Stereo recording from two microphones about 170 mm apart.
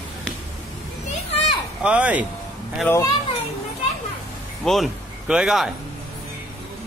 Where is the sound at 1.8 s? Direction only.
10° right (ahead or behind).